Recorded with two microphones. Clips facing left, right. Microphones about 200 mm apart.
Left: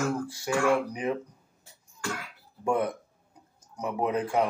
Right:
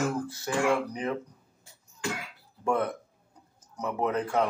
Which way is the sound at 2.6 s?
15° left (ahead or behind).